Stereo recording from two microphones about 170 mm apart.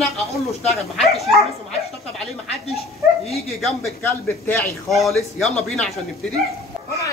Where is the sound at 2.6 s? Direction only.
35° left (ahead or behind).